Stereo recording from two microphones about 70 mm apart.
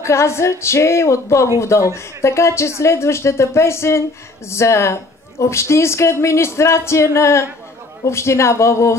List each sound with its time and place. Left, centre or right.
0.0 s a man's voice: left